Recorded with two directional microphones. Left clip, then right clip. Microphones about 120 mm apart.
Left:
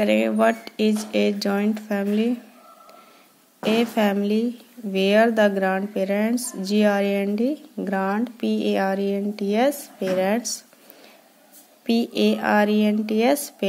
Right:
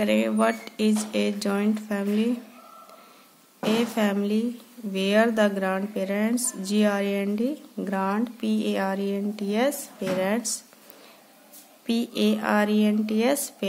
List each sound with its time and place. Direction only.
0.0 s speech: 30° left (ahead or behind)
3.6 s speech: 30° left (ahead or behind)
11.8 s speech: 30° left (ahead or behind)